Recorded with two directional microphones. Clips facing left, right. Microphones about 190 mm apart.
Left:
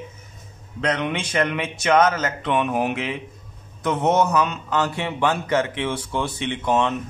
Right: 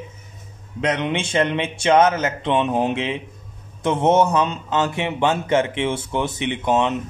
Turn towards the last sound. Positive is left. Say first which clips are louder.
# right 2 dB
turn(degrees=-20)  # may be behind; listen again after turning